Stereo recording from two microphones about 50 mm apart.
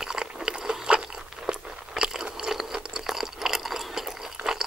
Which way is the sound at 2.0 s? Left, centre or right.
Centre.